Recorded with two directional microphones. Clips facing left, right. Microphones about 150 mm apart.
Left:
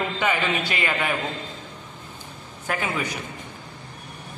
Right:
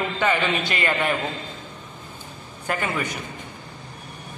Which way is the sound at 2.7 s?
5° left (ahead or behind).